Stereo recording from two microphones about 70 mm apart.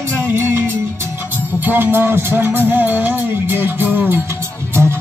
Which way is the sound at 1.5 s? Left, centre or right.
Right.